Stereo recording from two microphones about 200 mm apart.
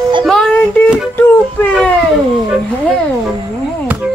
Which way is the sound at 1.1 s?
10° left (ahead or behind).